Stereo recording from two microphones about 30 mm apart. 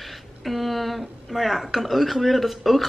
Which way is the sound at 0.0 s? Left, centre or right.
Centre.